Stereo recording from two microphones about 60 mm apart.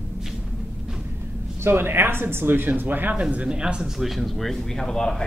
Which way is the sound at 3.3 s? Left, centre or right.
Centre.